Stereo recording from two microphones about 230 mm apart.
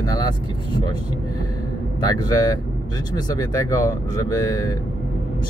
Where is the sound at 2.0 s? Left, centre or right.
Centre.